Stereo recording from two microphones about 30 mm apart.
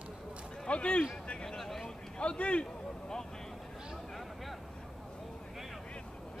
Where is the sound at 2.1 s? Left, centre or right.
Left.